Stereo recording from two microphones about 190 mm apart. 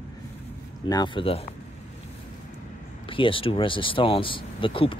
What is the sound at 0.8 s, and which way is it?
Speech, 20° left (ahead or behind).